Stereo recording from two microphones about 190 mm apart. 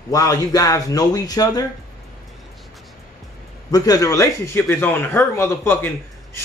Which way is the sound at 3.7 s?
20° left (ahead or behind).